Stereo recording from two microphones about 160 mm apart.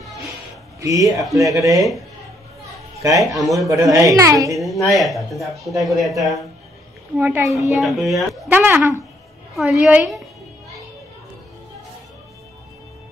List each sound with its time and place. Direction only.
0.7 s a woman's voice: 20° right (ahead or behind)
1.8 s speech: centre (ahead or behind)
3.0 s a man's voice: 20° right (ahead or behind)
3.3 s speech: centre (ahead or behind)
3.6 s a woman's voice: 20° right (ahead or behind)
4.6 s speech: centre (ahead or behind)
7.2 s speech: 15° right (ahead or behind)
7.7 s speech: centre (ahead or behind)
8.5 s speech: 10° right (ahead or behind)